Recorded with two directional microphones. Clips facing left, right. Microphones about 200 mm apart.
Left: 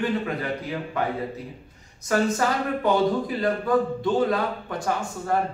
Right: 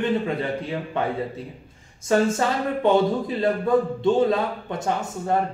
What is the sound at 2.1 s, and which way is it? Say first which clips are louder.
A man's voice: right 2 dB; 25° right (ahead or behind).